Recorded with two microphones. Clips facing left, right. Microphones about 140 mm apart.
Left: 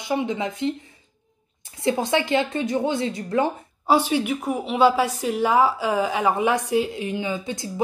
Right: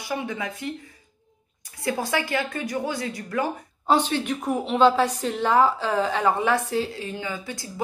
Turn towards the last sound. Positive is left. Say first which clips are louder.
# left 5 dB
turn(degrees=20)  # may be behind; listen again after turning